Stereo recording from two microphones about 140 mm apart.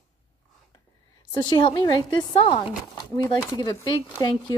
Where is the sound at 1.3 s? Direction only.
35° left (ahead or behind).